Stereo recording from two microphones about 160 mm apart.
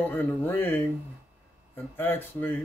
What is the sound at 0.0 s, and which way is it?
Speech, 10° left (ahead or behind).